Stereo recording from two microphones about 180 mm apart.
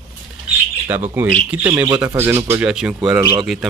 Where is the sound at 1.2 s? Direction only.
10° right (ahead or behind).